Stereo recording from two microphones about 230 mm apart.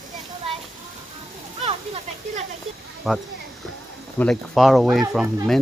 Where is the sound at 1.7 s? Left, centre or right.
Right.